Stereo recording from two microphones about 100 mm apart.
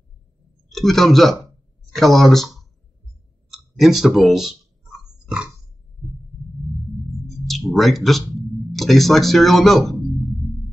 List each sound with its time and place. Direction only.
0.7 s speech: 5° left (ahead or behind)
3.5 s speech: centre (ahead or behind)
7.2 s music: centre (ahead or behind)
8.4 s a sound: centre (ahead or behind)